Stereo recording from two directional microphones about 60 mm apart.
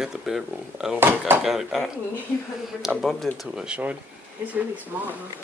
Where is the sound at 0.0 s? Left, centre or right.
Centre.